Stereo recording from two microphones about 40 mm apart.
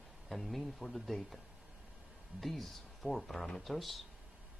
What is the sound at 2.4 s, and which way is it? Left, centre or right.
Speech, centre.